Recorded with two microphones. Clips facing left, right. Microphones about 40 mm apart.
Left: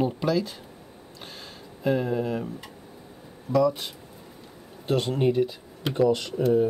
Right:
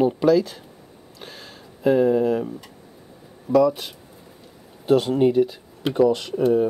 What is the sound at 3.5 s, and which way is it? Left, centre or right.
Speech, centre.